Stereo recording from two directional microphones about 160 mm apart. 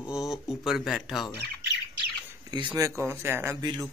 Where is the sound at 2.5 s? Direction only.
25° right (ahead or behind).